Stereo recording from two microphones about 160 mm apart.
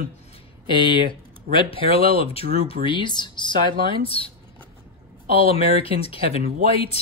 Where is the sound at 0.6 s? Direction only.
30° left (ahead or behind).